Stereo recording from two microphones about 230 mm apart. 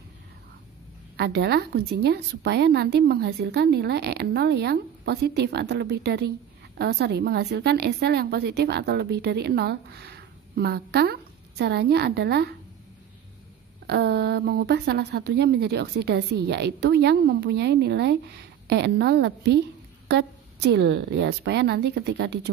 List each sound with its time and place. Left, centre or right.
1.1 s speech: right
13.8 s speech: right